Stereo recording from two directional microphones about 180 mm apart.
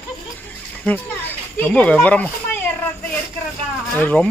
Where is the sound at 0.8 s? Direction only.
10° left (ahead or behind).